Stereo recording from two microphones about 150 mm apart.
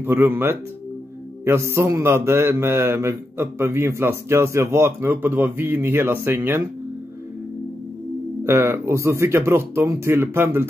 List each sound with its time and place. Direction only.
0.0 s a man's voice: 15° right (ahead or behind)
8.5 s a man's voice: 15° right (ahead or behind)